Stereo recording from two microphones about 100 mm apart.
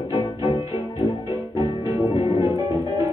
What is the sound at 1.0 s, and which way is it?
Music, 40° right (ahead or behind).